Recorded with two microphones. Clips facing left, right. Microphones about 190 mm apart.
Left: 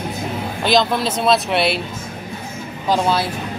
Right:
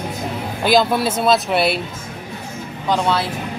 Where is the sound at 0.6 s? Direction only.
5° right (ahead or behind).